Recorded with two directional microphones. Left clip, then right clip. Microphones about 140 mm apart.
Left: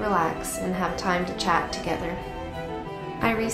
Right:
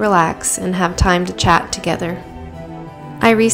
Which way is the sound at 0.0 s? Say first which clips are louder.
Right 10 dB; 70° right (ahead or behind).